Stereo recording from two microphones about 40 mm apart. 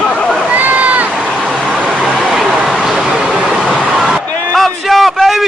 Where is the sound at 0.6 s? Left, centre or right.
Right.